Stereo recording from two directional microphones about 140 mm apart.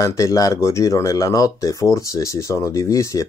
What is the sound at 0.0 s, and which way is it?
Speech, 25° left (ahead or behind).